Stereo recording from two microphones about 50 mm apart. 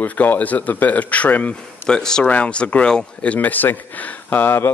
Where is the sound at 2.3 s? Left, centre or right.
Left.